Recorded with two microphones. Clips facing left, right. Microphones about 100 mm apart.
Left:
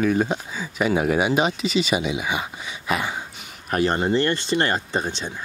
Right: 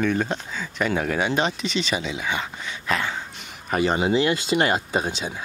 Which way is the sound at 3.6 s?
Centre (ahead or behind).